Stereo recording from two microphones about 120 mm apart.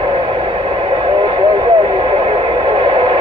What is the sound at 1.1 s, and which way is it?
Radio, 40° right (ahead or behind).